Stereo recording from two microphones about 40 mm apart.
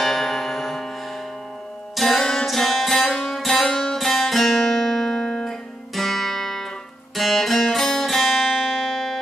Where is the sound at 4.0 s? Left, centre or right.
Centre.